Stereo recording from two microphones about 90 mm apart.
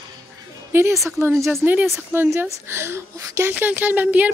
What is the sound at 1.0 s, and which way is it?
Speech, 30° right (ahead or behind).